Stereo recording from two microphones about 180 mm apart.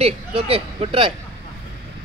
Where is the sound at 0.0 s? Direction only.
30° right (ahead or behind).